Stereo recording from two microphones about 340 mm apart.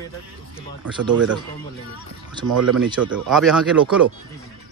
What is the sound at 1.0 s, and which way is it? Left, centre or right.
Speech, right.